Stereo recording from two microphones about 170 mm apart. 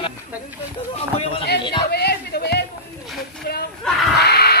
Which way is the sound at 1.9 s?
70° left (ahead or behind).